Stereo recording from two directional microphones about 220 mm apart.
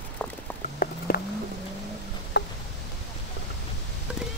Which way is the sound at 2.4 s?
55° left (ahead or behind).